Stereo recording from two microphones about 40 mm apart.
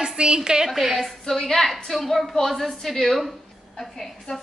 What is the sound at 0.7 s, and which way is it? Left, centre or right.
A woman's voice, centre.